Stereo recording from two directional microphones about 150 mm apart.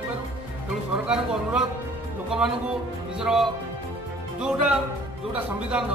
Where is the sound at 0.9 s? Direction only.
5° right (ahead or behind).